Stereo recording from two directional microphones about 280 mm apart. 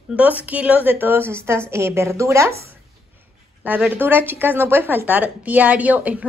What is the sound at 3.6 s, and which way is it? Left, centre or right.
Speech, centre.